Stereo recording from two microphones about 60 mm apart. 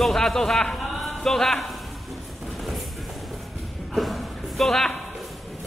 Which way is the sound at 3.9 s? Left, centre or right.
Centre.